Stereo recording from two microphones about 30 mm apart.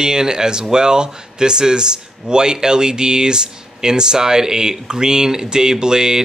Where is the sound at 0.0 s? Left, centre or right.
Right.